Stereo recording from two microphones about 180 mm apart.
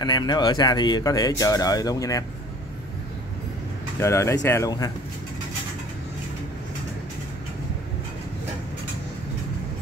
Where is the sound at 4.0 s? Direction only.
15° left (ahead or behind).